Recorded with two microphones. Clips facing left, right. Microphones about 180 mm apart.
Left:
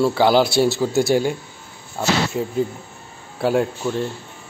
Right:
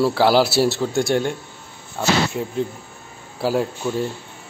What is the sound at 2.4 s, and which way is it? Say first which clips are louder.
A man's voice: left 2 dB; centre (ahead or behind).